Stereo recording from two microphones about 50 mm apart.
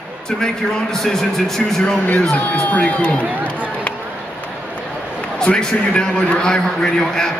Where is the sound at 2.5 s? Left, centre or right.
Left.